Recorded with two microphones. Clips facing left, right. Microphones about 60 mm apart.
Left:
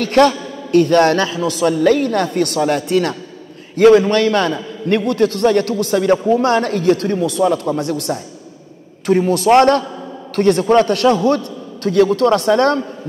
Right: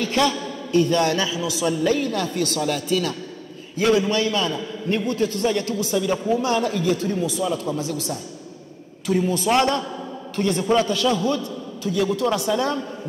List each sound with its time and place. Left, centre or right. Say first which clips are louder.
0.0 s a man's voice: left 8 dB; left
9.0 s a man's voice: left 7 dB; left